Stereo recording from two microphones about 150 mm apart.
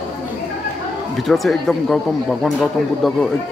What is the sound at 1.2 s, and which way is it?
Speech, centre (ahead or behind).